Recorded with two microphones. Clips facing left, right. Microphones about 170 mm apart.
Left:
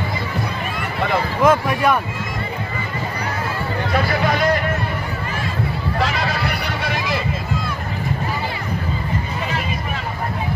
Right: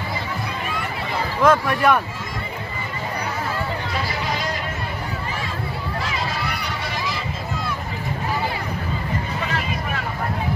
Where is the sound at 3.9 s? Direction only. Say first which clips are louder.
Left 10 dB; 60° left (ahead or behind).